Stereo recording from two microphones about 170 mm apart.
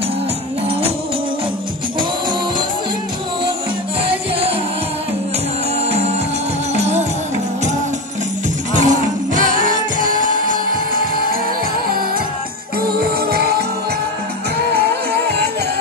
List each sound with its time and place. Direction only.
5.9 s music: 40° right (ahead or behind)
8.7 s music: 45° right (ahead or behind)